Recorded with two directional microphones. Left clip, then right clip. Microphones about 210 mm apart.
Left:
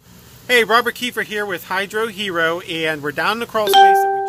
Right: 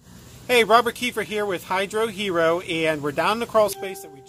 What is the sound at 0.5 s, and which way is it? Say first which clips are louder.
Speech: left 3 dB; 10° left (ahead or behind).